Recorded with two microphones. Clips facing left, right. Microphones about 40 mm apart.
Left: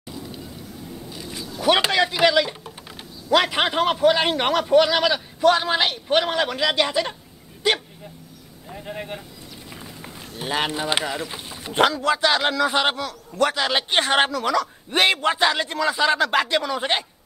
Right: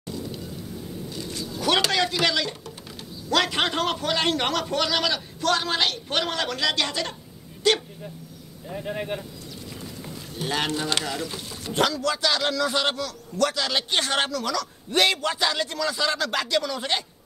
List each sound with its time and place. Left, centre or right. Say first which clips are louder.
1.1 s vehicle: even; centre
3.3 s a man's voice: left 4 dB; centre
8.6 s a man's voice: right 3 dB; centre
10.3 s speech: left 2 dB; centre